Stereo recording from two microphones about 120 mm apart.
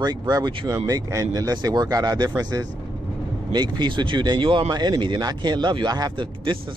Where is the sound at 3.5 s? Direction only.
40° right (ahead or behind).